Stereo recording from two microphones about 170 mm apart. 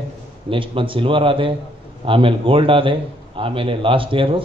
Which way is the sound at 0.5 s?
30° right (ahead or behind).